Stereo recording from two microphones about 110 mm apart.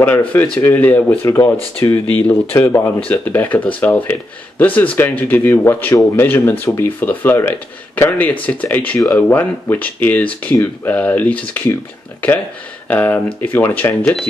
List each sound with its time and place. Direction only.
0.6 s speech: 20° left (ahead or behind)
2.1 s speech: 15° left (ahead or behind)